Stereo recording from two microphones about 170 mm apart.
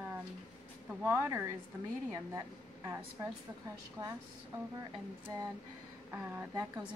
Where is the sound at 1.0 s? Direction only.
15° right (ahead or behind).